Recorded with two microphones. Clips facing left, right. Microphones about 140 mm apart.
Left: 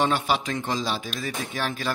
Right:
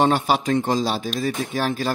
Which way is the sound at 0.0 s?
40° right (ahead or behind).